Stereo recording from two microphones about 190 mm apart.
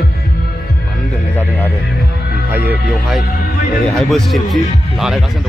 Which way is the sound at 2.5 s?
10° right (ahead or behind).